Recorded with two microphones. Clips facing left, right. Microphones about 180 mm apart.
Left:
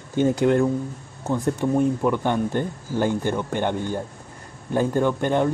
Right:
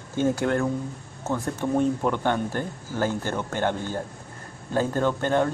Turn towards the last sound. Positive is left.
turn(degrees=15)  # may be behind; listen again after turning